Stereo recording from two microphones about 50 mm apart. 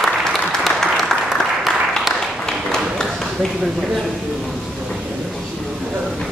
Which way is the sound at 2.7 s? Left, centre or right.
Centre.